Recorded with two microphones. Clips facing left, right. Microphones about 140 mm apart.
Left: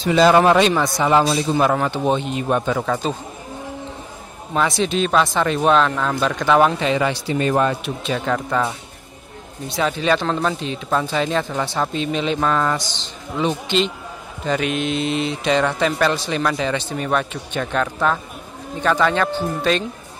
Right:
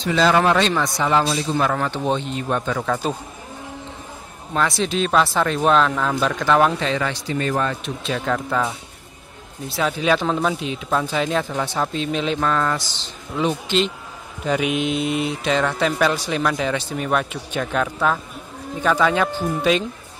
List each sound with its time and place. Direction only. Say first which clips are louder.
0.0 s speech: left 4 dB; 15° left (ahead or behind)
4.6 s speech: left 2 dB; centre (ahead or behind)
7.8 s speech: left 2 dB; centre (ahead or behind)
12.7 s speech: left 2 dB; 5° right (ahead or behind)